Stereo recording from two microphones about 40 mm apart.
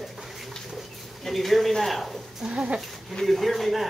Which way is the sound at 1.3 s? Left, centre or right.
Centre.